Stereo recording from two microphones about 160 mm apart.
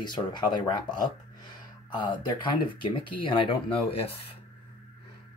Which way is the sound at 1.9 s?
30° left (ahead or behind).